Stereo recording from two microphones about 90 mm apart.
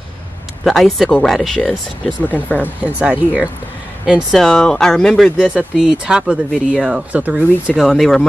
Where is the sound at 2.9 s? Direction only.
15° right (ahead or behind).